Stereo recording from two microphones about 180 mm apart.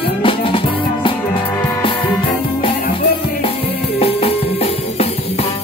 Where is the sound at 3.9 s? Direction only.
35° left (ahead or behind).